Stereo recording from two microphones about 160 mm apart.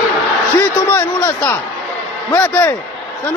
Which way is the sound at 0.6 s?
15° left (ahead or behind).